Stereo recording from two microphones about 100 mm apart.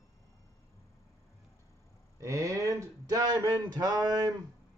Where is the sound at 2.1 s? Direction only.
30° right (ahead or behind).